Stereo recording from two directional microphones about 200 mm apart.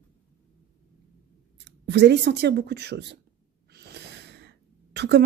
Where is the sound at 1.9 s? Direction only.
60° right (ahead or behind).